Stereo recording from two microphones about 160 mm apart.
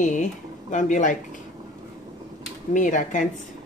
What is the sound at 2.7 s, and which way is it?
Speech, 55° left (ahead or behind).